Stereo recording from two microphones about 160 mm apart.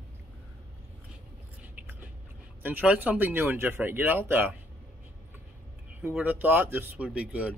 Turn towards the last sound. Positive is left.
turn(degrees=-10)  # may be behind; listen again after turning